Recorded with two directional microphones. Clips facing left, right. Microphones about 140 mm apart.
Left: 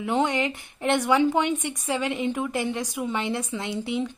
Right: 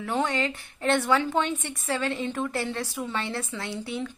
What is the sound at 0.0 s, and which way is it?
A woman's voice, 20° left (ahead or behind).